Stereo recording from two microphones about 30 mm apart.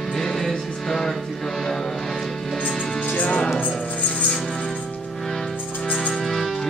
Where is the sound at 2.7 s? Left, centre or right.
Centre.